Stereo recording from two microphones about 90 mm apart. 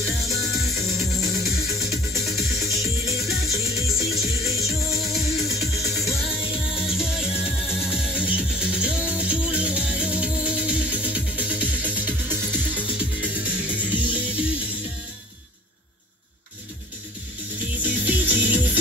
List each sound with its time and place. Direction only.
0.0 s music: centre (ahead or behind)
17.8 s music: 20° right (ahead or behind)